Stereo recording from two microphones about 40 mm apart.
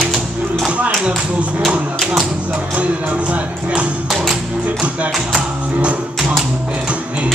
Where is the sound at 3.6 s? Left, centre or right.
Right.